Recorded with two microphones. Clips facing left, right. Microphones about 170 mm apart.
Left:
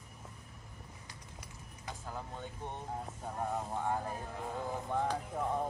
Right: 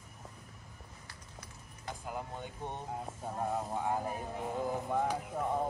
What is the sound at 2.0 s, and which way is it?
Speech, 15° right (ahead or behind).